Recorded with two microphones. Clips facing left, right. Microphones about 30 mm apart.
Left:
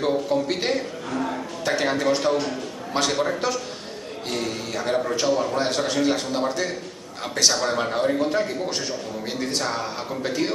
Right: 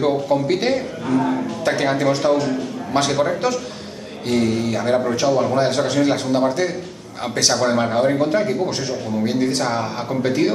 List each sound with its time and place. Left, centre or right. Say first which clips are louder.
0.0 s a man's voice: right 4 dB; centre